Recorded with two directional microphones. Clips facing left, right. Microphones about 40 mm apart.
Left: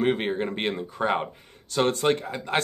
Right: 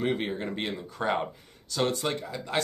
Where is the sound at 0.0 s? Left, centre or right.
Left.